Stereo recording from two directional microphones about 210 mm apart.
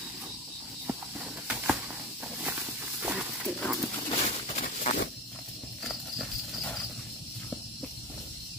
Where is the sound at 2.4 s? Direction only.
5° right (ahead or behind).